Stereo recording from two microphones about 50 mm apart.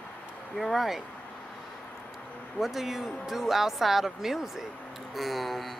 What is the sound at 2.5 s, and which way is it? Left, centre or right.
Speech, centre.